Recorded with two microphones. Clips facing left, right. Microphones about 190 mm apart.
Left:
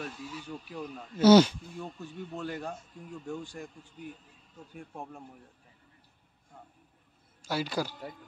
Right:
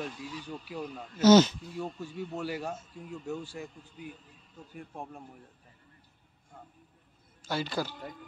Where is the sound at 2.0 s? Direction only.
10° right (ahead or behind).